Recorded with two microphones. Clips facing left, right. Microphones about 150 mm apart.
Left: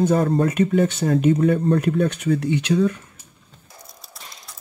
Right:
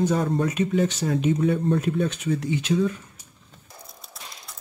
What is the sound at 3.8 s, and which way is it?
Music, centre (ahead or behind).